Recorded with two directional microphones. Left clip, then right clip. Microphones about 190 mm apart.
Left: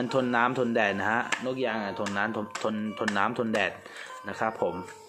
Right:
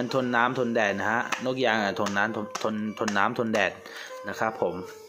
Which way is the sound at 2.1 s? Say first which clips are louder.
Right 3 dB; 10° right (ahead or behind).